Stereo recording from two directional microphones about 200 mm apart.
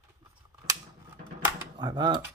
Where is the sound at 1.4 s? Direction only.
20° right (ahead or behind).